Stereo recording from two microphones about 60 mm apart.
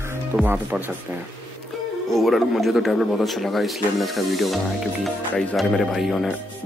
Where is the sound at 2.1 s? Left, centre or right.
Centre.